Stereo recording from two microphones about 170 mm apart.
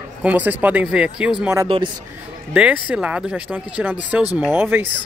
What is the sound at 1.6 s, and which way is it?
Speech, 30° right (ahead or behind).